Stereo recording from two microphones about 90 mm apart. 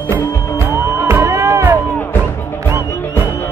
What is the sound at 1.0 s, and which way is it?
Music, 30° right (ahead or behind).